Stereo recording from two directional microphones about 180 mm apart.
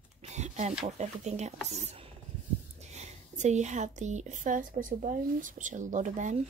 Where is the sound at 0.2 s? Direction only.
40° right (ahead or behind).